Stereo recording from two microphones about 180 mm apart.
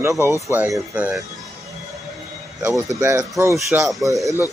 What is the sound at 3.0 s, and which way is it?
Speech, 15° right (ahead or behind).